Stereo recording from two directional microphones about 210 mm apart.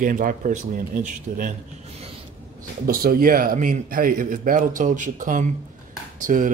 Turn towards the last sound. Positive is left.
turn(degrees=-40)  # may be behind; listen again after turning